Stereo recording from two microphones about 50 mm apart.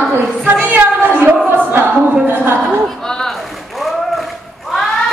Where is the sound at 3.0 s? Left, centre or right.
Centre.